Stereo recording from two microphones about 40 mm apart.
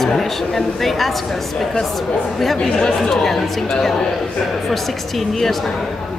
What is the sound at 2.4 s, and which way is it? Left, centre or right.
Speech, centre.